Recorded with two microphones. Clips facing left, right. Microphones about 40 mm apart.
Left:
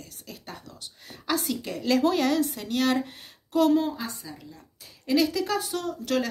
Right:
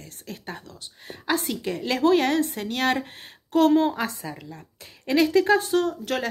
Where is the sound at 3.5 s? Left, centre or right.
Right.